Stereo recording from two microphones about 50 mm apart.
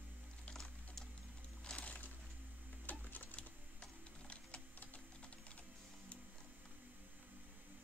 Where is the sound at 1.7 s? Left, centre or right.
Left.